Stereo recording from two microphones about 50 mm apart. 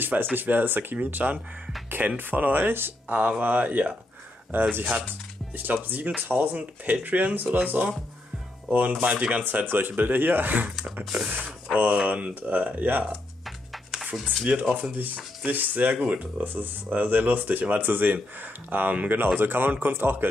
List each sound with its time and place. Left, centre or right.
0.0 s speech: right
3.2 s speech: right
4.5 s speech: right
9.0 s speech: right
11.1 s speech: centre
11.7 s speech: right
14.4 s speech: right